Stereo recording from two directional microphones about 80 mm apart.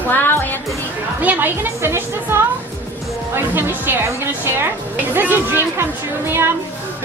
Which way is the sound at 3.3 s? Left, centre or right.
Right.